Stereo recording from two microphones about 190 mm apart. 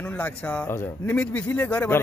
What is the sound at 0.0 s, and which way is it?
A man's voice, 5° left (ahead or behind).